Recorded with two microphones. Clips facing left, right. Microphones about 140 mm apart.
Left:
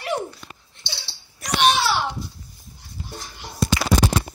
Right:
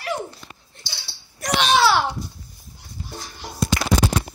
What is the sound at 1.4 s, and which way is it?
Speech, 90° right.